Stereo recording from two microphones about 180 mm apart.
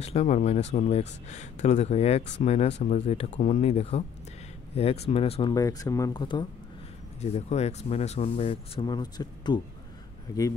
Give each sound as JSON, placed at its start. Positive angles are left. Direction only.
{"t": 0.0, "sound": "speech", "side_deg": 35}
{"t": 5.5, "sound": "speech", "side_deg": 20}
{"t": 7.2, "sound": "speech", "side_deg": 40}